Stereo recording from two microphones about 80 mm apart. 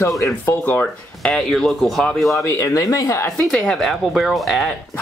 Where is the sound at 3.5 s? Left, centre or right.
Centre.